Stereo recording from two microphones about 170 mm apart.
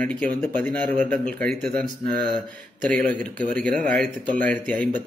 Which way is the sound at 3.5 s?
5° left (ahead or behind).